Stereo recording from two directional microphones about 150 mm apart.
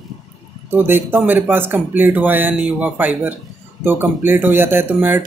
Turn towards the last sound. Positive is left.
turn(degrees=-15)  # may be behind; listen again after turning